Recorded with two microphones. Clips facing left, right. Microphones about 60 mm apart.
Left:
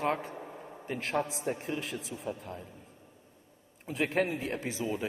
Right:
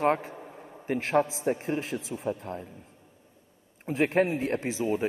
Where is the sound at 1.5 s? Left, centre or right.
Right.